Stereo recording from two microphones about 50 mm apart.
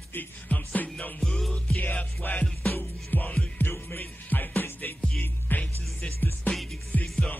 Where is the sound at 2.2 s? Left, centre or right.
Left.